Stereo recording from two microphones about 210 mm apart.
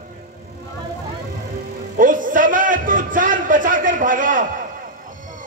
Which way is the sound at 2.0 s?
40° right (ahead or behind).